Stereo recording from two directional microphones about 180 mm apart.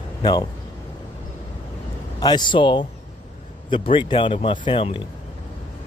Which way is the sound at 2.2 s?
25° left (ahead or behind).